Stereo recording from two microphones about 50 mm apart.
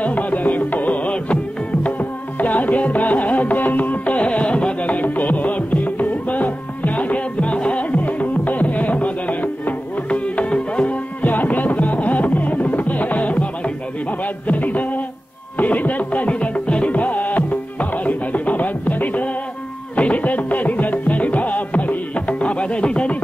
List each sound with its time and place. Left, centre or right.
0.0 s music: left
11.2 s music: left